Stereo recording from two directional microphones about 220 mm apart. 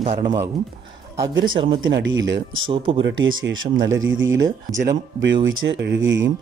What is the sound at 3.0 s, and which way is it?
Speech, 55° right (ahead or behind).